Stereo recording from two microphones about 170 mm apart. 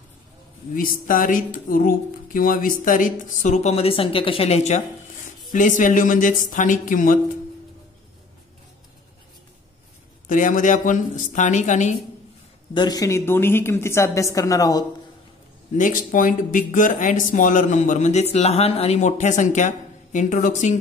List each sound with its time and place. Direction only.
0.7 s a woman's voice: 55° left (ahead or behind)
10.2 s speech: 50° left (ahead or behind)
12.7 s a woman's voice: 25° left (ahead or behind)
15.7 s speech: 50° left (ahead or behind)